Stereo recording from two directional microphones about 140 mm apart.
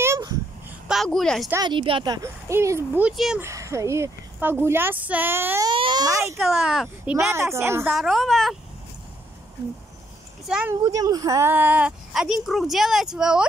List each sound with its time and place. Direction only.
0.0 s babbling: 20° right (ahead or behind)
0.8 s speech: centre (ahead or behind)
1.6 s speech: 35° right (ahead or behind); by 3.0 s 20° right (ahead or behind)
3.0 s speech: 5° right (ahead or behind)
3.3 s speech: 20° right (ahead or behind)
5.7 s a sound: 35° right (ahead or behind)
6.3 s speech: centre (ahead or behind)
7.2 s speech: 20° right (ahead or behind)
7.9 s speech: centre (ahead or behind)
10.4 s speech: 5° right (ahead or behind)
10.7 s speech: 25° right (ahead or behind); by 13.5 s 5° right (ahead or behind)